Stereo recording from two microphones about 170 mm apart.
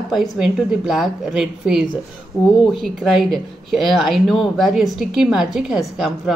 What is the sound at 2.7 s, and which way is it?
Speech, centre (ahead or behind).